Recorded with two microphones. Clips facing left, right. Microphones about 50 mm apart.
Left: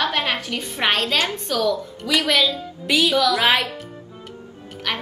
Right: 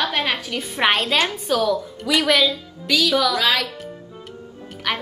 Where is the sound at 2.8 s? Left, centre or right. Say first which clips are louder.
Left 1 dB; left.